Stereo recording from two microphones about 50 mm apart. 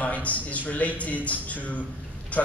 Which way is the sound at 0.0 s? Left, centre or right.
Left.